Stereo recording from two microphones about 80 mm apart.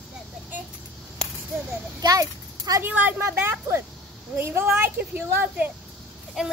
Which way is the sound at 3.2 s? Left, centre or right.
Right.